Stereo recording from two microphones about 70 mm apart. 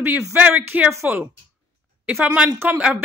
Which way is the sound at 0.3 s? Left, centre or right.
Right.